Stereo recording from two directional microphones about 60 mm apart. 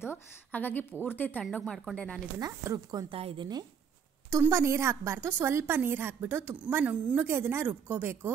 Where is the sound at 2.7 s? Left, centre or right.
Right.